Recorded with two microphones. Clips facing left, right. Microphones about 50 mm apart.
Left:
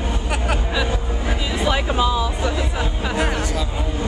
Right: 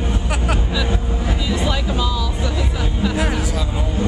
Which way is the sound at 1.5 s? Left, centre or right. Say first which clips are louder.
Left 1 dB; centre.